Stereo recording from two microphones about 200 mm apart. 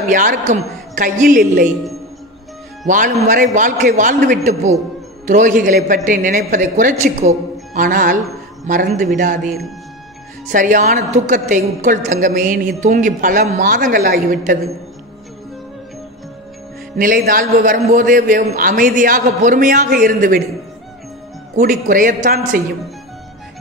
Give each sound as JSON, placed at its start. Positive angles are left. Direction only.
{"t": 0.1, "sound": "a woman's voice", "side_deg": -40}
{"t": 2.9, "sound": "a woman's voice", "side_deg": -40}
{"t": 16.9, "sound": "a man's voice", "side_deg": -45}
{"t": 21.5, "sound": "a man's voice", "side_deg": -40}